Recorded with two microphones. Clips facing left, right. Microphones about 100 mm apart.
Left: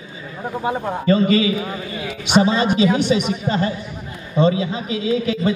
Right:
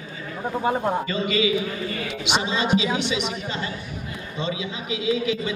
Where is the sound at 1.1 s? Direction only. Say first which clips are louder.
Left 7 dB; 40° left (ahead or behind).